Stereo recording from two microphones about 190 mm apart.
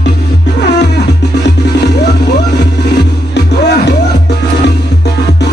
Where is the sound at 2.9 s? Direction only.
60° left (ahead or behind).